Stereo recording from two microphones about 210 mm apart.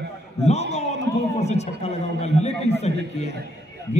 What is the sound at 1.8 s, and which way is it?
A man's voice, 30° left (ahead or behind).